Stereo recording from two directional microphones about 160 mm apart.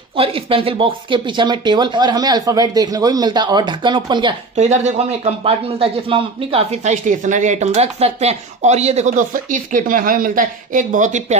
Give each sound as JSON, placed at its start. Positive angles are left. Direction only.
{"t": 0.1, "sound": "speech", "side_deg": -35}
{"t": 4.6, "sound": "a man's voice", "side_deg": -45}